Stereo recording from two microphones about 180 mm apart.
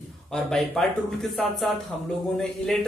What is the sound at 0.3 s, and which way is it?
A man's voice, centre (ahead or behind).